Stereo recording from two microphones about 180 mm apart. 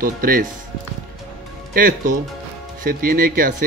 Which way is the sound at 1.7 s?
55° right (ahead or behind).